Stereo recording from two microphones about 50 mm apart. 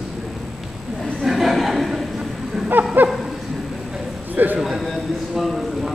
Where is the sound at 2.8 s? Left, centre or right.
Right.